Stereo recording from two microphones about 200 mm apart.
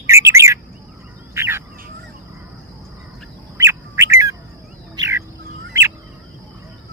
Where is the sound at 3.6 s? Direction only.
15° right (ahead or behind).